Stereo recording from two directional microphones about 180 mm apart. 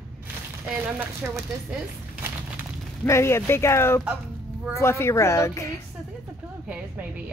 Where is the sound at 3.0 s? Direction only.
15° left (ahead or behind).